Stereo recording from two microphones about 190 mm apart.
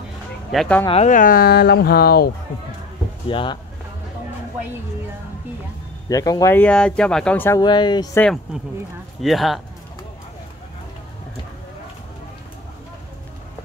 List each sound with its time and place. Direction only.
0.5 s speech: centre (ahead or behind)
0.8 s speech: 35° left (ahead or behind); by 2.3 s 55° left (ahead or behind)
3.3 s speech: 25° left (ahead or behind)
6.0 s speech: 20° left (ahead or behind)
7.6 s speech: 25° left (ahead or behind)
9.2 s speech: centre (ahead or behind)